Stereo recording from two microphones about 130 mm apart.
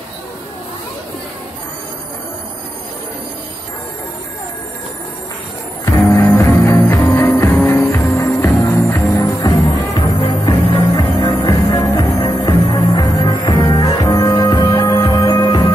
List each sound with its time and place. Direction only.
6.1 s music: 20° left (ahead or behind)
9.9 s music: 40° left (ahead or behind)
15.4 s music: 45° left (ahead or behind)